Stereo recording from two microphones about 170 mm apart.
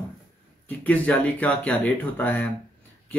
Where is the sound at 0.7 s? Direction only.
10° left (ahead or behind).